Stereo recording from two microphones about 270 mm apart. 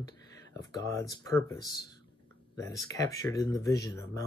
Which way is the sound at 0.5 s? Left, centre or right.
Centre.